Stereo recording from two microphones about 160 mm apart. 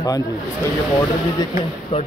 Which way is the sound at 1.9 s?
35° left (ahead or behind).